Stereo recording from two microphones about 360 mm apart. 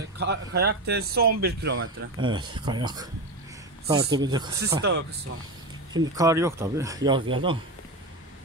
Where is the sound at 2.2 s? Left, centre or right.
Centre.